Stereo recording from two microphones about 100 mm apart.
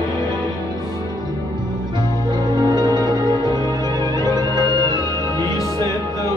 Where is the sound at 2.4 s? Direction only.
45° right (ahead or behind).